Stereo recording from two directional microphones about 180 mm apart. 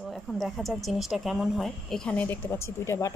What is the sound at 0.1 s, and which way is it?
Speech, centre (ahead or behind).